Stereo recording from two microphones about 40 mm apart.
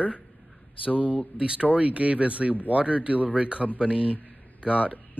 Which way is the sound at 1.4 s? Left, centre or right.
Right.